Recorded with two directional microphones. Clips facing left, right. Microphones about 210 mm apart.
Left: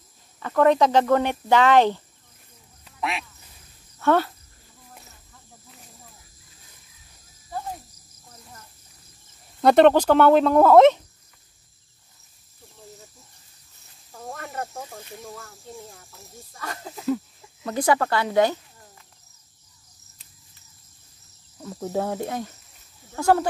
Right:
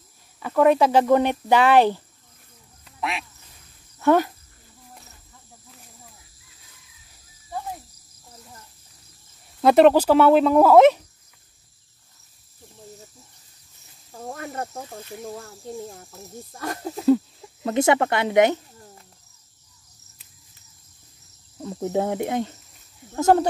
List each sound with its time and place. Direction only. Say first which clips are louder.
0.4 s speech: right 1 dB; 10° right (ahead or behind)
2.8 s quack: even; centre (ahead or behind)
4.0 s speech: right 2 dB; 15° right (ahead or behind)
9.6 s speech: right 1 dB; 5° right (ahead or behind)
14.3 s snake: right 1 dB; 35° right (ahead or behind)
16.0 s speech: right 7 dB; 45° right (ahead or behind)
17.6 s speech: right 3 dB; 25° right (ahead or behind)
21.6 s speech: right 3 dB; 25° right (ahead or behind)